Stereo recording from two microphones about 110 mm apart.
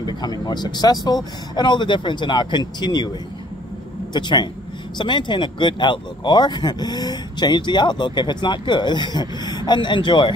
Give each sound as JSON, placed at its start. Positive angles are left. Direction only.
{"t": 0.0, "sound": "speech", "side_deg": 40}
{"t": 4.1, "sound": "speech", "side_deg": 45}